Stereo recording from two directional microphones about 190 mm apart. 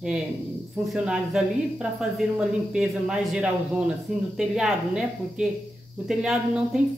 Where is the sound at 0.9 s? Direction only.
5° right (ahead or behind).